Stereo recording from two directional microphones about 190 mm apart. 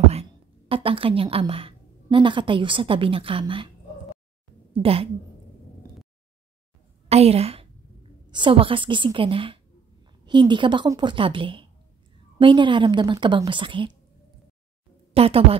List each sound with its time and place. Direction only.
0.1 s a woman's voice: 30° right (ahead or behind)
4.8 s a woman's voice: 30° right (ahead or behind)
7.1 s a woman's voice: 35° right (ahead or behind)
15.1 s speech: 30° right (ahead or behind)